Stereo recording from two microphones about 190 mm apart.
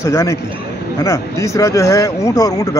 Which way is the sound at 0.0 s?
15° left (ahead or behind).